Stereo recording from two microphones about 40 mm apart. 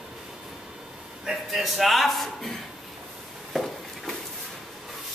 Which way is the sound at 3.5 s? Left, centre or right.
Centre.